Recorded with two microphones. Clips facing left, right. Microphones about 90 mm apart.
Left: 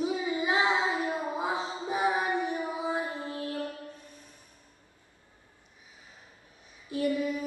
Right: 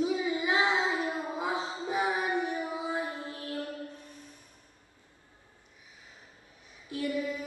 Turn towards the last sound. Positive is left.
turn(degrees=20)  # may be behind; listen again after turning